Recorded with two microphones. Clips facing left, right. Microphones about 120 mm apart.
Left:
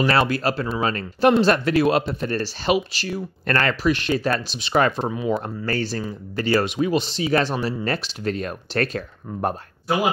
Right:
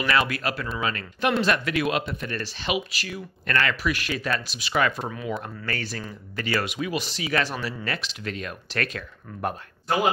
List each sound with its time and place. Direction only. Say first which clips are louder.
0.0 s speech: left 5 dB; 35° left (ahead or behind)